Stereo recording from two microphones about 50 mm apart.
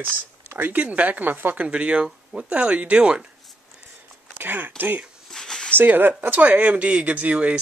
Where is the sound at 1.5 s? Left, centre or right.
Right.